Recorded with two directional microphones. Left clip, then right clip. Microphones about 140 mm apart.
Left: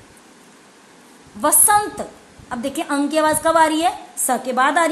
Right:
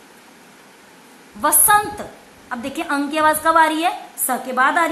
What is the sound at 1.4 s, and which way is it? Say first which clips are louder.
A woman's voice: right 1 dB; 50° left (ahead or behind).